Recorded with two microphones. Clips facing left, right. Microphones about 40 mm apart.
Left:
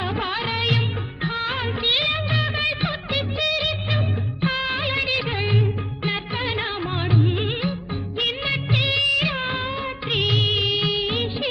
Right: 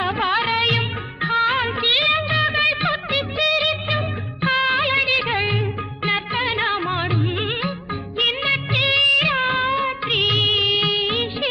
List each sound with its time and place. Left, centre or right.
0.0 s music of bollywood: right